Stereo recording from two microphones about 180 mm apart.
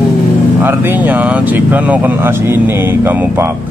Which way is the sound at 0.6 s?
10° right (ahead or behind).